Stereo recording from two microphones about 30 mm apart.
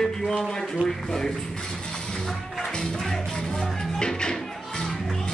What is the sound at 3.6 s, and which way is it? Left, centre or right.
Music, left.